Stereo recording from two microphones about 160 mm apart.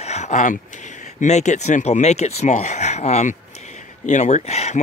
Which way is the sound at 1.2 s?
45° left (ahead or behind).